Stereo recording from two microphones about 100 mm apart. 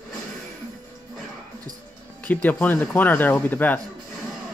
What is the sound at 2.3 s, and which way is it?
Speech, 15° left (ahead or behind).